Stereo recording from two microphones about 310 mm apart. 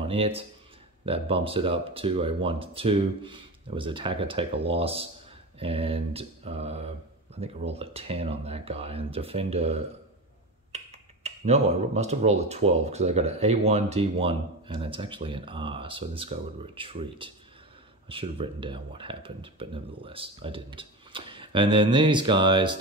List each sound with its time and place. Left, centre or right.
0.0 s speech: centre